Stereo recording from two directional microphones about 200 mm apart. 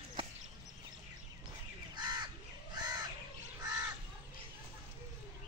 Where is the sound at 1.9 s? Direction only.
20° right (ahead or behind).